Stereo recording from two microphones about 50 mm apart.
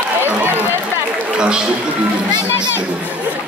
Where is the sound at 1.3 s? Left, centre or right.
Centre.